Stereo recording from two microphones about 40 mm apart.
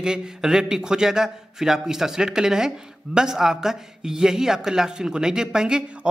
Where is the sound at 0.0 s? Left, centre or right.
Centre.